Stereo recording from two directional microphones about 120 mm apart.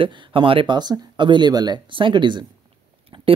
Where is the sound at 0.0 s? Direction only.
45° right (ahead or behind).